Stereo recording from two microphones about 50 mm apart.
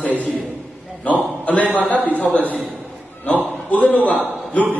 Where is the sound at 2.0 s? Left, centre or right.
Left.